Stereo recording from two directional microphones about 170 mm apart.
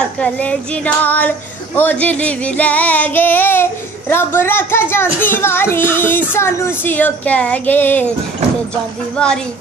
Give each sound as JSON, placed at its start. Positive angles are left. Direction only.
{"t": 0.0, "sound": "a child's voice", "side_deg": 5}
{"t": 9.1, "sound": "a woman's voice", "side_deg": 5}